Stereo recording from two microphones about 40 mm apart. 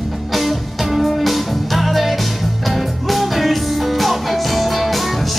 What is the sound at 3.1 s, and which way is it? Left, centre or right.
Music, centre.